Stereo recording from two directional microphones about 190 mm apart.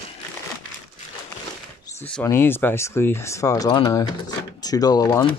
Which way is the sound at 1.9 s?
10° left (ahead or behind).